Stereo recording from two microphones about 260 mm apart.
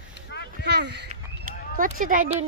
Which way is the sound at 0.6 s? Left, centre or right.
Right.